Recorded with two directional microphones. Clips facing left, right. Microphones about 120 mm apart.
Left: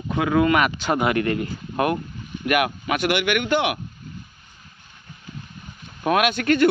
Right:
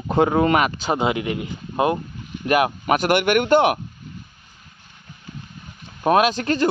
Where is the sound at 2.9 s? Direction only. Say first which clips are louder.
Right 5 dB; 45° right (ahead or behind).